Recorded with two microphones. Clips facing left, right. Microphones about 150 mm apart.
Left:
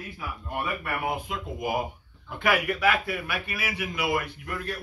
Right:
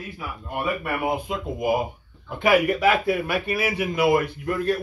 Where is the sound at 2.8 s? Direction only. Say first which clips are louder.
Right 5 dB; 30° right (ahead or behind).